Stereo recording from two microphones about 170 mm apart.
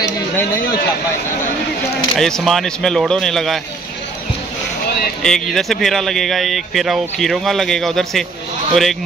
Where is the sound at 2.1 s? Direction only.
Centre (ahead or behind).